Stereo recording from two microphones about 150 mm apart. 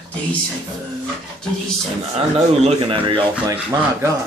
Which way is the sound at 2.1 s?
35° right (ahead or behind).